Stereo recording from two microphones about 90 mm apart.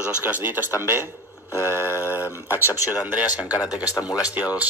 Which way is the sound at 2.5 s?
35° left (ahead or behind).